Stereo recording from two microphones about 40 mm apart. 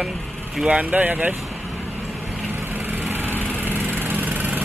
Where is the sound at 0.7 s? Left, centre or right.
Right.